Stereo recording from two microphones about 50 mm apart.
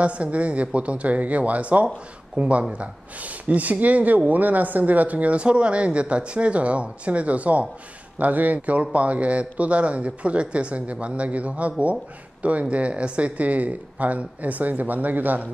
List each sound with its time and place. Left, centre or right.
0.0 s speech: right